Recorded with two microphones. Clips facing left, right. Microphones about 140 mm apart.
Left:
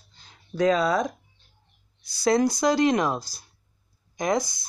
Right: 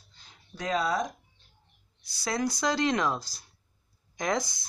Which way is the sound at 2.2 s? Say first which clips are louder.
Left 9 dB; 30° left (ahead or behind).